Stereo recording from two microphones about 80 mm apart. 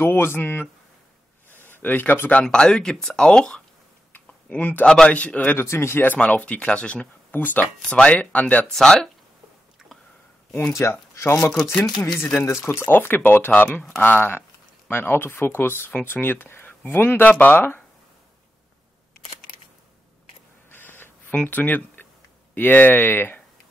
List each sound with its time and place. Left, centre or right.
0.0 s speech: left
2.4 s speech: centre
4.5 s speech: centre
4.8 s speech: centre; by 6.1 s left
6.1 s speech: centre
8.6 s speech: centre
9.8 s a sound: centre
10.7 s speech: left
11.5 s speech: centre
12.6 s speech: left
20.7 s a sound: left
21.4 s speech: left